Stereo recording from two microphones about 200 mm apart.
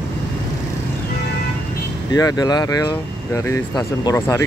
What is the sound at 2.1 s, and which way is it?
Speech, 20° left (ahead or behind).